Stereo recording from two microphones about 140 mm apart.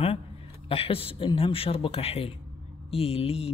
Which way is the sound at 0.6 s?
40° left (ahead or behind).